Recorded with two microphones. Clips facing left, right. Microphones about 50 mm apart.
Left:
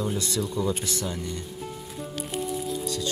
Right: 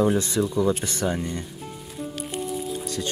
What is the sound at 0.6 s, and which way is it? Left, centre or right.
Speech, right.